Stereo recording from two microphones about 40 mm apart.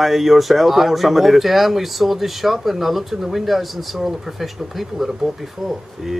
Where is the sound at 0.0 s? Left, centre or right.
Centre.